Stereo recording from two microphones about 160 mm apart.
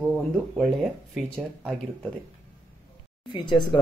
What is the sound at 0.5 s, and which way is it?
Speech, 5° right (ahead or behind).